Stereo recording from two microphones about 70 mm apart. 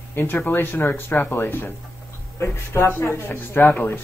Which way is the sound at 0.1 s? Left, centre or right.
Left.